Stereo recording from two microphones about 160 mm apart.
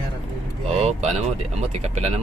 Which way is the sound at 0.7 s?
40° right (ahead or behind).